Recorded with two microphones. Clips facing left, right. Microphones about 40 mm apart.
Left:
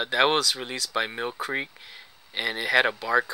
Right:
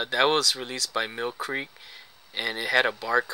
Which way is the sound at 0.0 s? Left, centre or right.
Centre.